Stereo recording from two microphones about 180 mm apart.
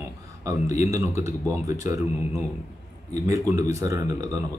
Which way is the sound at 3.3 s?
15° right (ahead or behind).